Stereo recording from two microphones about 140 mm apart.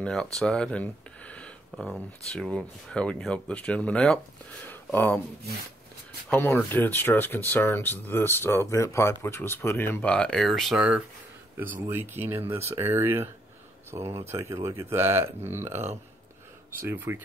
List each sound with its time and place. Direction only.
0.0 s speech: 5° left (ahead or behind)
6.3 s speech: 15° left (ahead or behind); by 17.2 s 15° right (ahead or behind)